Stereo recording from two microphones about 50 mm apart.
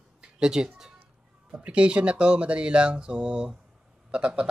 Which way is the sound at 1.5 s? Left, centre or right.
Right.